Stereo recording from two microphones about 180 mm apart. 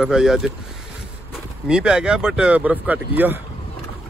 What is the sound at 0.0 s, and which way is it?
Speech, 5° right (ahead or behind).